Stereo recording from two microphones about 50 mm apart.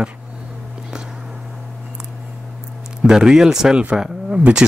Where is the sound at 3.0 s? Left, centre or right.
Centre.